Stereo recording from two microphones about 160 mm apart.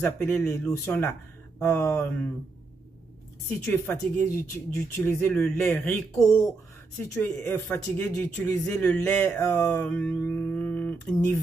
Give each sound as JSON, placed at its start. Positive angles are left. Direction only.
{"t": 0.0, "sound": "speech", "side_deg": 15}
{"t": 3.4, "sound": "speech", "side_deg": 10}